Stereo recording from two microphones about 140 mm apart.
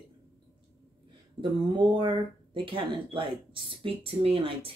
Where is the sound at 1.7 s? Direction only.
35° right (ahead or behind).